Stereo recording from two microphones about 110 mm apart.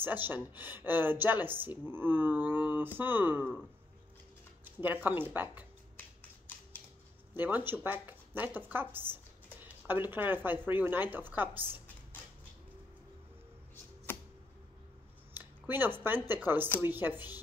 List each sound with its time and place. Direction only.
0.0 s speech: 20° right (ahead or behind)
4.7 s speech: 15° right (ahead or behind)
7.3 s speech: 15° right (ahead or behind)
14.1 s typewriter: 20° left (ahead or behind)
15.3 s a sound: 20° right (ahead or behind)
16.3 s a woman's voice: 20° right (ahead or behind)